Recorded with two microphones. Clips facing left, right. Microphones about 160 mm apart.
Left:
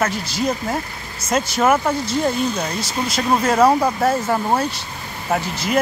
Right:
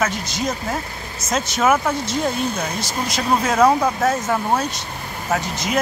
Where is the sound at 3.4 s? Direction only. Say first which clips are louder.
Left 1 dB; 5° left (ahead or behind).